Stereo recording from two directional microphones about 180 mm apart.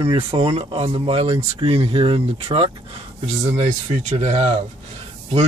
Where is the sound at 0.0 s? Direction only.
30° right (ahead or behind).